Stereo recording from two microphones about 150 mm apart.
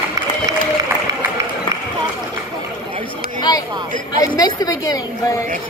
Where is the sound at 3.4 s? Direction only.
25° left (ahead or behind).